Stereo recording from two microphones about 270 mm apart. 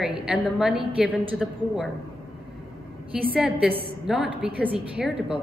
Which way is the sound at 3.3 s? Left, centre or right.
Centre.